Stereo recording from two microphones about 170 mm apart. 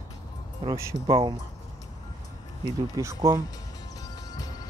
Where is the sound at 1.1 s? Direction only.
30° right (ahead or behind).